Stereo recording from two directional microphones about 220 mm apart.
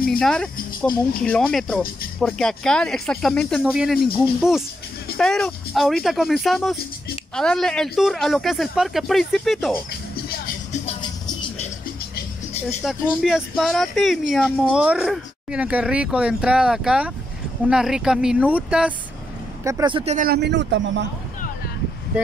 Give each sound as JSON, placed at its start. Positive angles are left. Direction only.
{"t": 0.2, "sound": "speech", "side_deg": 0}
{"t": 10.4, "sound": "music", "side_deg": 30}
{"t": 11.0, "sound": "music", "side_deg": 20}
{"t": 12.8, "sound": "speech", "side_deg": -5}
{"t": 19.6, "sound": "speech", "side_deg": -15}
{"t": 20.2, "sound": "a man's voice", "side_deg": -45}